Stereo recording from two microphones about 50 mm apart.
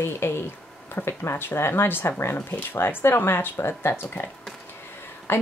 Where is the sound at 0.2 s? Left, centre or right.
Left.